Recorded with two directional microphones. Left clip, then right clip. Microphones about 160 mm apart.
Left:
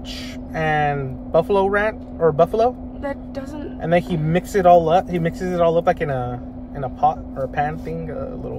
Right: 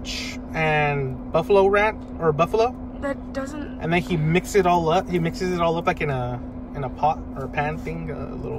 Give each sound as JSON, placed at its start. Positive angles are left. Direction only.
{"t": 0.7, "sound": "speech", "side_deg": 25}
{"t": 3.0, "sound": "a woman's voice", "side_deg": -10}
{"t": 3.8, "sound": "speech", "side_deg": 25}